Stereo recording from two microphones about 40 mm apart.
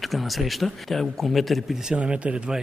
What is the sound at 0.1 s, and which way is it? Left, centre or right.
Speech, centre.